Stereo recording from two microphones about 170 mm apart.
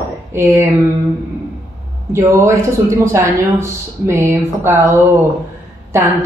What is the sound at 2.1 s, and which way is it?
A man's voice, 15° right (ahead or behind).